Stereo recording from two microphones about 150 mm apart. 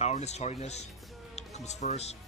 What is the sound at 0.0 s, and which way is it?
Speech, 50° left (ahead or behind).